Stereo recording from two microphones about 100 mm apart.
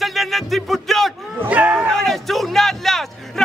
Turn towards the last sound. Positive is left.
turn(degrees=5)  # may be behind; listen again after turning